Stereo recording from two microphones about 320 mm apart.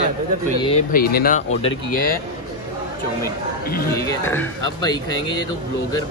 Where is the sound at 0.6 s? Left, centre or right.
Centre.